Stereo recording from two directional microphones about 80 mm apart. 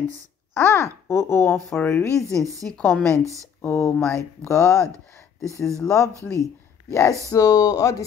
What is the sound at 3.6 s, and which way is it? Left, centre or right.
Speech, left.